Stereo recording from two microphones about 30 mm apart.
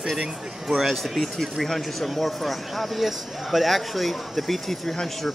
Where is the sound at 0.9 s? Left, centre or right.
Centre.